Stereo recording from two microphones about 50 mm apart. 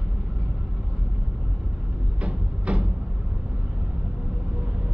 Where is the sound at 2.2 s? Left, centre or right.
Right.